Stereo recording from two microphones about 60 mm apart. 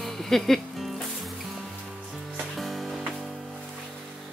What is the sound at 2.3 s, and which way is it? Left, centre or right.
Music, centre.